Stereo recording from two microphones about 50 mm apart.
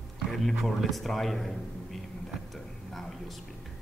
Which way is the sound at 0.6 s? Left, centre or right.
Centre.